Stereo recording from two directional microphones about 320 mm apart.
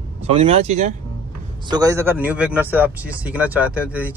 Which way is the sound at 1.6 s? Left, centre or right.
Centre.